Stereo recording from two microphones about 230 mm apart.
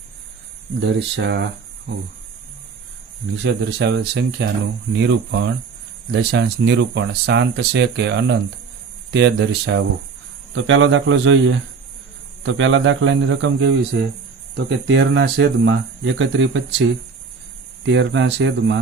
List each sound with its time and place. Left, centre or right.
0.7 s speech: right
3.4 s speech: right